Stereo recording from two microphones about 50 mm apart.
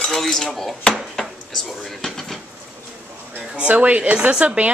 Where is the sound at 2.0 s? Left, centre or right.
Centre.